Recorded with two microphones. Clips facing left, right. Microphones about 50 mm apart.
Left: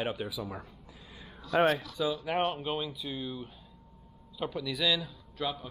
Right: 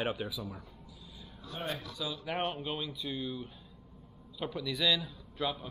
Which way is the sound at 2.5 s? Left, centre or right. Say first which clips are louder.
Left 3 dB; centre.